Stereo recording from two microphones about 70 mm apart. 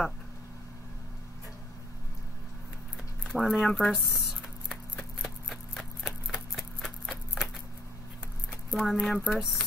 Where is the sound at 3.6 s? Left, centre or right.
Centre.